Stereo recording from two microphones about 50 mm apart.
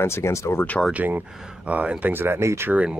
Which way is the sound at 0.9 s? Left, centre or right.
Right.